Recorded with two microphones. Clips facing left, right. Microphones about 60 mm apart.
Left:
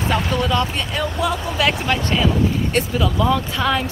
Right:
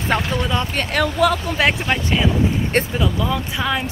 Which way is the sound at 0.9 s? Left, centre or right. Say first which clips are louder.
Right 5 dB; right.